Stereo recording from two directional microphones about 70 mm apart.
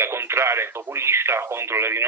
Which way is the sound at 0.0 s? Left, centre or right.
Right.